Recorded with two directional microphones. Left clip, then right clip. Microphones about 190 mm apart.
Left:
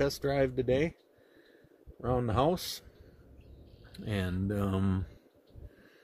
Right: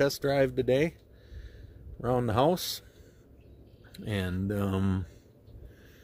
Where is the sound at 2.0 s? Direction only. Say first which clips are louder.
Right 3 dB; 20° right (ahead or behind).